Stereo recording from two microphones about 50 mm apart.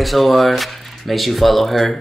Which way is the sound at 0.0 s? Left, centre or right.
Centre.